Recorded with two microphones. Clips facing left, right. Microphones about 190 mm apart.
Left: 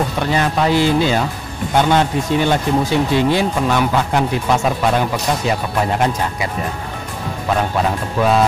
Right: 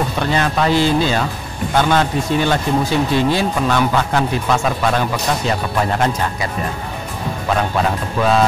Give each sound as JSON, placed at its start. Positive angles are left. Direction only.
{"t": 0.3, "sound": "speech", "side_deg": 10}
{"t": 8.2, "sound": "speech", "side_deg": 10}